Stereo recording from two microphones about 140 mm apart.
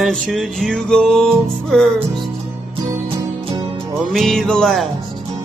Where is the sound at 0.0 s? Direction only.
Centre (ahead or behind).